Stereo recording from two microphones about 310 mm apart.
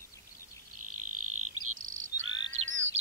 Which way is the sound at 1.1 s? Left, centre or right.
Right.